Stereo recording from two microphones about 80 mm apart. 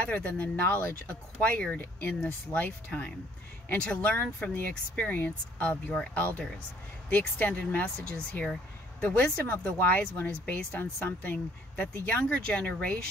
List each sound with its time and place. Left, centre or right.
0.0 s speech: centre